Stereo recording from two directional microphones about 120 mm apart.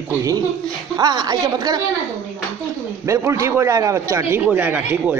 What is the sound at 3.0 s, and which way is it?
A man's voice, 25° right (ahead or behind).